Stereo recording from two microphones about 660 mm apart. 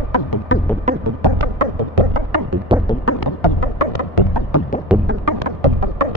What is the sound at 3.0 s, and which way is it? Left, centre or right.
Music, left.